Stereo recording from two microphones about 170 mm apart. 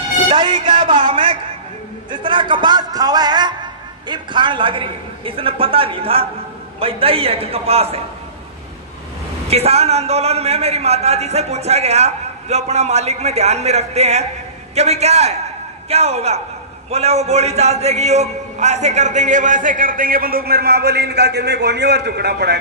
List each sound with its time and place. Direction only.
0.3 s a woman's voice: 25° right (ahead or behind)
9.5 s a man's voice: 35° right (ahead or behind); by 22.6 s 75° right (ahead or behind)